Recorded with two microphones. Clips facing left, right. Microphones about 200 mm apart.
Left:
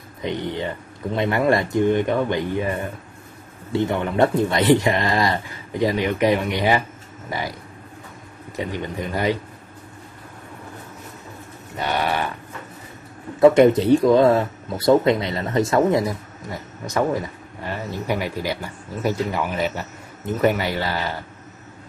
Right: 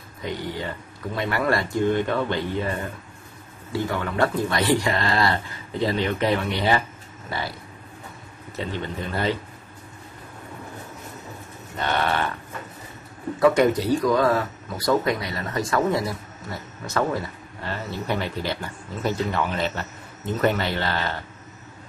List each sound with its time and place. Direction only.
0.2 s speech: 20° left (ahead or behind)
8.5 s speech: 15° left (ahead or behind)
11.8 s speech: 10° left (ahead or behind)
13.4 s speech: 25° left (ahead or behind)